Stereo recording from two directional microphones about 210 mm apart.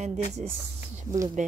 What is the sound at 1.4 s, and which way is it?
Speech, 35° right (ahead or behind).